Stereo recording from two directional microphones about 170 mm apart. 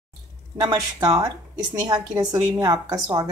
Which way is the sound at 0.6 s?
20° right (ahead or behind).